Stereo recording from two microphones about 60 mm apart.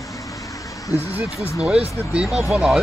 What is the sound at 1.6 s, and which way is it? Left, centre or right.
Speech, centre.